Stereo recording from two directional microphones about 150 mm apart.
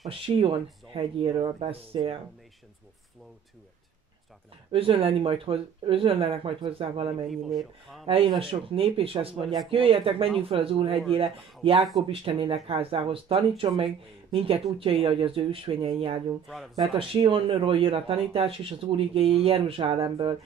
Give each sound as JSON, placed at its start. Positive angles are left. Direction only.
{"t": 0.1, "sound": "speech", "side_deg": -35}
{"t": 4.7, "sound": "speech", "side_deg": -40}
{"t": 7.2, "sound": "speech", "side_deg": 0}
{"t": 8.1, "sound": "speech", "side_deg": -35}
{"t": 16.4, "sound": "speech", "side_deg": 0}
{"t": 16.7, "sound": "speech", "side_deg": -30}